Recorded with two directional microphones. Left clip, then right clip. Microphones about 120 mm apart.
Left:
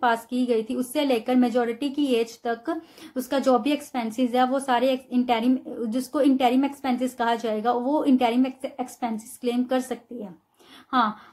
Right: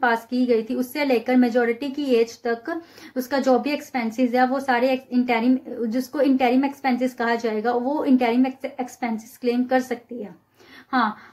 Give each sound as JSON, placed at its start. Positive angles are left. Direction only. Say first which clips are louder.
{"t": 0.0, "sound": "a woman's voice", "louder": "right 2 dB", "side_deg": 25}